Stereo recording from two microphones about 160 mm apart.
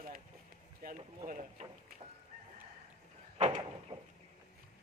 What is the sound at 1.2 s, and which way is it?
Speech, 50° right (ahead or behind).